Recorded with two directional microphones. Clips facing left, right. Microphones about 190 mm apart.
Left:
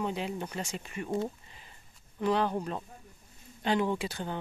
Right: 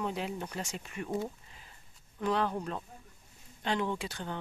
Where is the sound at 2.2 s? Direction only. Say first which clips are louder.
Left 3 dB; centre (ahead or behind).